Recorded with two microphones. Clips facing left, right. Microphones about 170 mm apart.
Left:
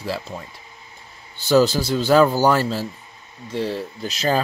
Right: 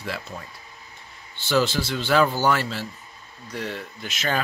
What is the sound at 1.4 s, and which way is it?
Speech, 40° left (ahead or behind).